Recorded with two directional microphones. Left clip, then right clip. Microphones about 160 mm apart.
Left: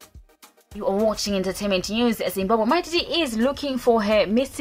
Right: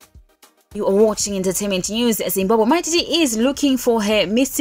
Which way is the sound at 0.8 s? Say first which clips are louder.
Right 6 dB; 20° right (ahead or behind).